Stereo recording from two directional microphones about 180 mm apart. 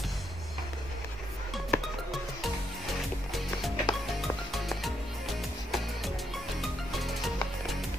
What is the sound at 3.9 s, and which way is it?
Music, 25° left (ahead or behind).